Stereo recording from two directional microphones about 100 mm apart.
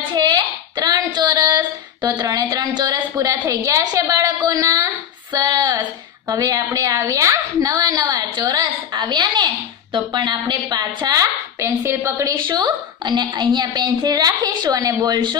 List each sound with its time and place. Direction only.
0.1 s a sound: 45° right (ahead or behind)
5.3 s a woman's voice: 40° right (ahead or behind)
11.6 s a woman's voice: 25° right (ahead or behind)
12.4 s a woman's voice: 50° right (ahead or behind)